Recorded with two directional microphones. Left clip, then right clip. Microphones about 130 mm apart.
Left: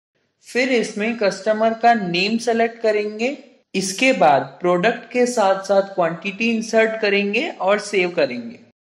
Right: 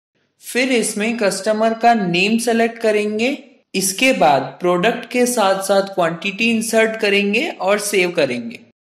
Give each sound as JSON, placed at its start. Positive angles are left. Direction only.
{"t": 0.5, "sound": "a woman's voice", "side_deg": -45}